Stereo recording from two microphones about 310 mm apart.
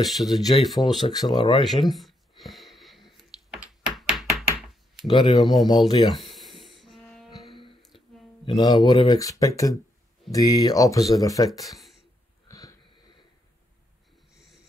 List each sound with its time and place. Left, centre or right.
0.0 s speech: centre
0.7 s speech: centre
1.6 s a sound: centre
5.0 s speech: centre
6.3 s music: centre
8.5 s speech: centre
12.4 s wheeze: centre